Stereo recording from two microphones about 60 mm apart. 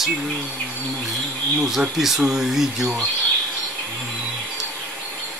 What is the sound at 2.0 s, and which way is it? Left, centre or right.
Speech, centre.